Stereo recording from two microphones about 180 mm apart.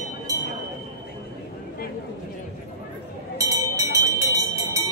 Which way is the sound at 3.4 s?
20° right (ahead or behind).